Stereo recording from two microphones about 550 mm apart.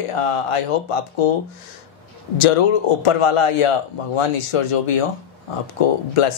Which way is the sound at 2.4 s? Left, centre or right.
Left.